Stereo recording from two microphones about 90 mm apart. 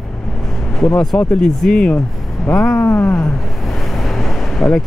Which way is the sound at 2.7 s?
25° left (ahead or behind).